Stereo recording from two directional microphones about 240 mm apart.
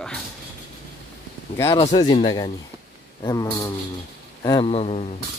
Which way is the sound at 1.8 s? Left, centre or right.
Left.